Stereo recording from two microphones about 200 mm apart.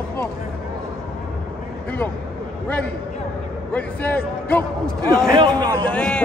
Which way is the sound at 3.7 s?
10° left (ahead or behind).